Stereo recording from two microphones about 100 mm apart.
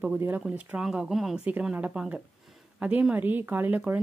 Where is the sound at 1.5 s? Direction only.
15° right (ahead or behind).